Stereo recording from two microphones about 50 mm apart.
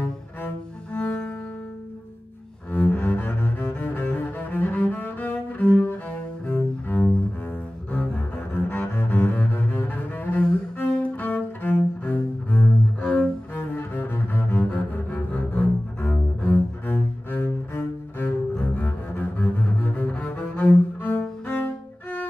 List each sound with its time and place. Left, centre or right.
0.9 s cello: left
2.7 s cello: left
8.5 s double bass: left
11.0 s cello: left
13.0 s cello: left
13.7 s double bass: left
14.7 s cello: left